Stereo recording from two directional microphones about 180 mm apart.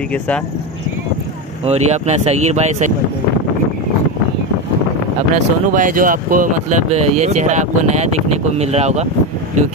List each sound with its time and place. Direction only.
1.7 s speech: 35° right (ahead or behind)
5.3 s speech: 45° right (ahead or behind)